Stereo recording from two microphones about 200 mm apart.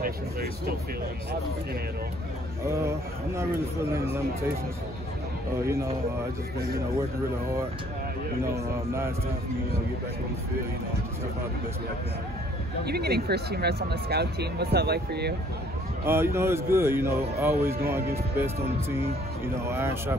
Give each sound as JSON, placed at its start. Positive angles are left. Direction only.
{"t": 0.0, "sound": "speech", "side_deg": -50}
{"t": 3.3, "sound": "speech", "side_deg": -10}
{"t": 8.4, "sound": "speech", "side_deg": -10}
{"t": 12.8, "sound": "speech", "side_deg": -55}
{"t": 16.1, "sound": "speech", "side_deg": -10}